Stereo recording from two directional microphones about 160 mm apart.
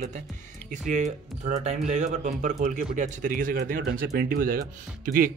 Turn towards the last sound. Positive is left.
turn(degrees=-60)  # may be behind; listen again after turning